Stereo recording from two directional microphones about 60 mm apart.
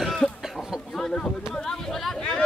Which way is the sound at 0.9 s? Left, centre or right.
Centre.